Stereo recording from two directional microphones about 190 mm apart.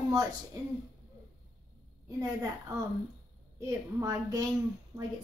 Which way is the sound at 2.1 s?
15° right (ahead or behind).